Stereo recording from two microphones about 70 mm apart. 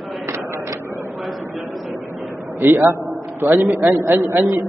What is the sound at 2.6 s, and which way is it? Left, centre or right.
A man's voice, right.